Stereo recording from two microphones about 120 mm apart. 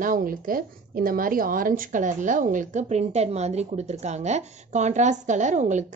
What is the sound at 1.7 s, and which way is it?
A woman's voice, 90° right.